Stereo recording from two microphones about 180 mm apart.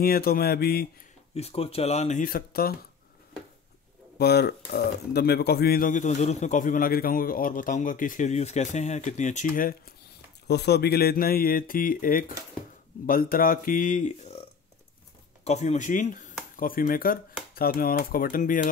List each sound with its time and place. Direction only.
0.0 s speech: 55° left (ahead or behind)
1.3 s speech: 35° left (ahead or behind); by 2.7 s 55° left (ahead or behind)
4.2 s speech: 65° left (ahead or behind)
10.4 s speech: 65° left (ahead or behind); by 14.4 s 40° left (ahead or behind)
15.4 s speech: 40° left (ahead or behind)